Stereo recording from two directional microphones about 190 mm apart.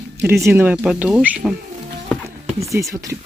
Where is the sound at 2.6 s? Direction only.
15° right (ahead or behind).